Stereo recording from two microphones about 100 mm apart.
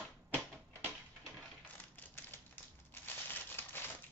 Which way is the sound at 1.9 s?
20° left (ahead or behind).